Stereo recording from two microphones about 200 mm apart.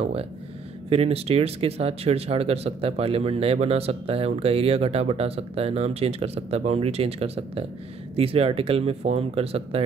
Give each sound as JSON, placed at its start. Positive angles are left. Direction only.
{"t": 0.8, "sound": "speech", "side_deg": -30}